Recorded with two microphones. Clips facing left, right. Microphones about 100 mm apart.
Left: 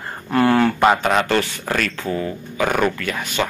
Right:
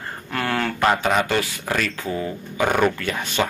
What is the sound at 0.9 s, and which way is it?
A man's voice, centre (ahead or behind).